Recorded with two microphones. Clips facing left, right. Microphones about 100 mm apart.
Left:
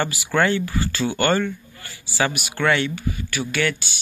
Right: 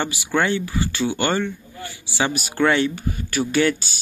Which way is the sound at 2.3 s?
35° right (ahead or behind).